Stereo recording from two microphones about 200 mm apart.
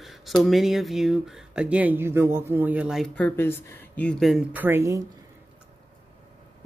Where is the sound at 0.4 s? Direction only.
Centre (ahead or behind).